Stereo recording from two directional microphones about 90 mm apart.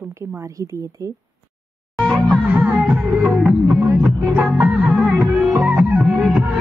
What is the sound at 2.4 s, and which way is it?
Music, 20° right (ahead or behind).